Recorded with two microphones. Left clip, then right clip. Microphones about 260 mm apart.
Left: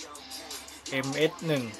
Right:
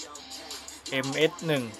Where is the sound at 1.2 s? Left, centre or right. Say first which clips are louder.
Right 2 dB; right.